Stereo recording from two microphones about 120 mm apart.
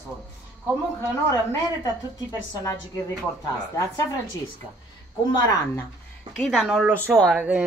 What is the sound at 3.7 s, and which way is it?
Speech, 25° left (ahead or behind).